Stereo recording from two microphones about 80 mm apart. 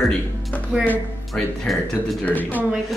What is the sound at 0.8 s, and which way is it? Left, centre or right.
Speech, left.